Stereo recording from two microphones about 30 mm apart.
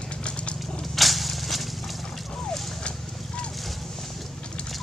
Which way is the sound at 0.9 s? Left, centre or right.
Centre.